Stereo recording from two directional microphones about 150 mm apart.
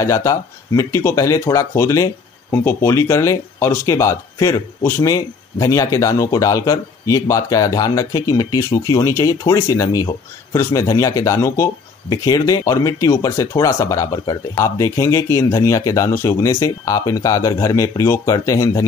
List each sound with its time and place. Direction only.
0.0 s speech: 20° left (ahead or behind)